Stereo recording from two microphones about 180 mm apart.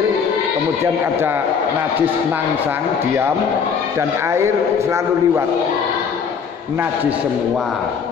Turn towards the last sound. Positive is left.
turn(degrees=-10)  # may be behind; listen again after turning